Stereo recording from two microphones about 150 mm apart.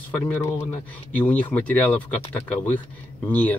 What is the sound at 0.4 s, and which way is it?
Speech, 20° left (ahead or behind).